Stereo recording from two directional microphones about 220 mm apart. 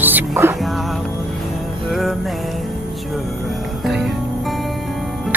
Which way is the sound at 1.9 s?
Centre (ahead or behind).